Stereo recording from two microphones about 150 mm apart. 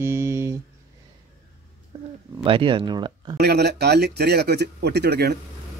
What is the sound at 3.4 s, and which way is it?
A man's voice, 90° right.